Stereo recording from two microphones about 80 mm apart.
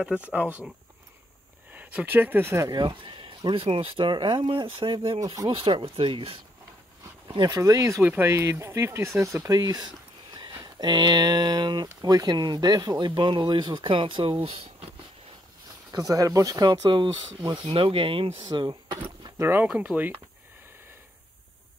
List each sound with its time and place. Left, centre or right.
0.0 s speech: centre
1.7 s speech: right
2.7 s speech: right
5.2 s speech: right
5.5 s speech: right
7.2 s speech: right
7.5 s speech: right
9.6 s speech: right
13.0 s speech: right
15.9 s speech: right
18.5 s speech: right
19.3 s speech: right
19.6 s speech: centre